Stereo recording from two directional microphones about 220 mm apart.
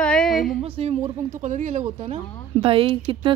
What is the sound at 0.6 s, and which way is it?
Speech, 25° right (ahead or behind).